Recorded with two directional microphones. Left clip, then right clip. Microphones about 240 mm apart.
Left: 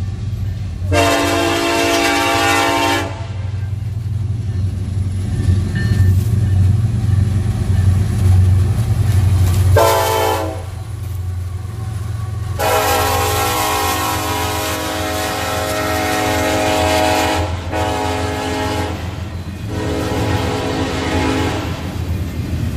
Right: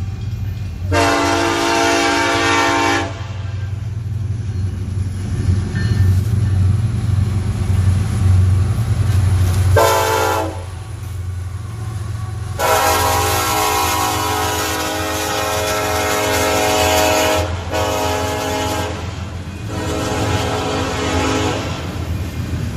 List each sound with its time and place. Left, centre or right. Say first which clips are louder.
0.8 s train: left 1 dB; left
2.1 s train: left 1 dB; left
9.8 s train: left 1 dB; centre
12.5 s train: even; centre; by 18.9 s right
19.7 s music: left 1 dB; right